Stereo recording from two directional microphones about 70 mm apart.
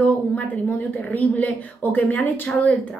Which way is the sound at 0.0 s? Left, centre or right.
Left.